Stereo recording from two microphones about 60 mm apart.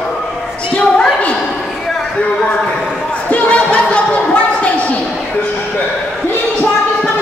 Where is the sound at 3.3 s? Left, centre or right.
Left.